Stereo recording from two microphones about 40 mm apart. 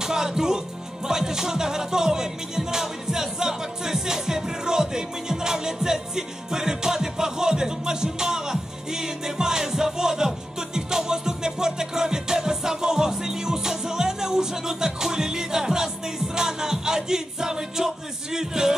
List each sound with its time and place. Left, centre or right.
0.0 s speech: centre
1.0 s music: centre